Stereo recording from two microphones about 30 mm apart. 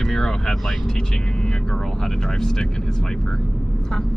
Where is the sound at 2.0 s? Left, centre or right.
Centre.